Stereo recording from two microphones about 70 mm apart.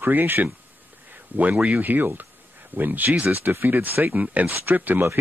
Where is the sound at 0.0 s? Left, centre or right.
Right.